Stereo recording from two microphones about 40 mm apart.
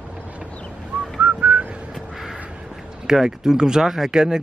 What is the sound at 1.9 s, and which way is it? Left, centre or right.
Crow, centre.